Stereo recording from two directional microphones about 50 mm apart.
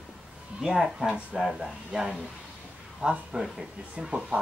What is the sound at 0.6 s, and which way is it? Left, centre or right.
Speech, centre.